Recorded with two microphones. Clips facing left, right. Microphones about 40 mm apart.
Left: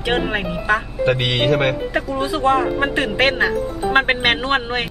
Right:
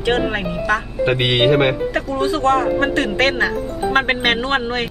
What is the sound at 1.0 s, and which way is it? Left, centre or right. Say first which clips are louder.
Speech: right 4 dB; centre.